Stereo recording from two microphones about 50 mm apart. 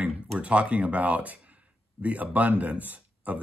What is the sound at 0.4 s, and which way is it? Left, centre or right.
Speech, right.